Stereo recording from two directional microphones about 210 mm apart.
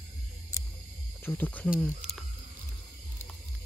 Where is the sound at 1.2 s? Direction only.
10° left (ahead or behind).